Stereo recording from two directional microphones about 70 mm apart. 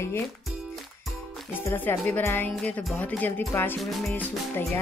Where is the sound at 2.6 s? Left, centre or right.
Left.